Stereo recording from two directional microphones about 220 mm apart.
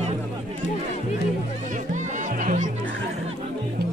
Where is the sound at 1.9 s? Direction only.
35° right (ahead or behind).